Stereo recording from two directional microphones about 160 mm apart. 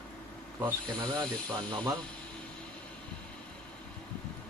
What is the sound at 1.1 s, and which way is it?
Speech, 25° right (ahead or behind).